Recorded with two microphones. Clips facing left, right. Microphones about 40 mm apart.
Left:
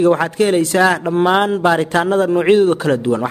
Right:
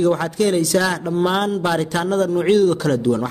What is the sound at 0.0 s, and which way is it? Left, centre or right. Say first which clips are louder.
A man's voice: left 4 dB; left.